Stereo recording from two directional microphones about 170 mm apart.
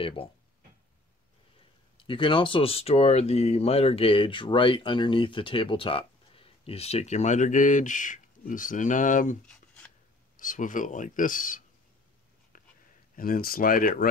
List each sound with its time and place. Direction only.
0.0 s speech: 30° left (ahead or behind)
2.0 s speech: 30° left (ahead or behind); by 9.4 s 50° left (ahead or behind)
9.5 s rub: 10° left (ahead or behind)
10.3 s speech: 50° left (ahead or behind)
12.5 s a sound: 55° left (ahead or behind)
13.1 s speech: 55° left (ahead or behind)